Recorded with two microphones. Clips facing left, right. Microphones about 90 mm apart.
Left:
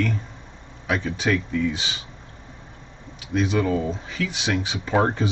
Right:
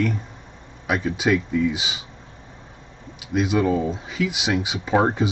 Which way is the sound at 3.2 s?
10° right (ahead or behind).